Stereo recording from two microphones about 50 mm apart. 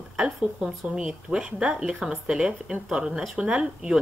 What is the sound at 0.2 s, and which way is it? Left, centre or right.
Speech, centre.